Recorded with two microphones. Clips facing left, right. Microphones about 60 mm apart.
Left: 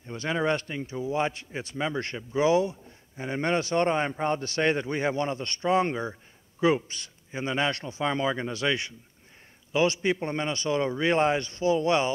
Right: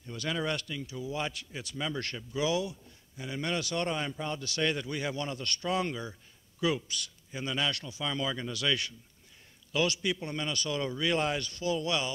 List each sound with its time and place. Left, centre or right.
0.0 s a man's voice: left